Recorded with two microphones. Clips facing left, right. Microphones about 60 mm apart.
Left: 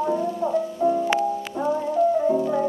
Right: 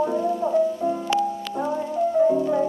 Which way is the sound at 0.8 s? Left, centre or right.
Left.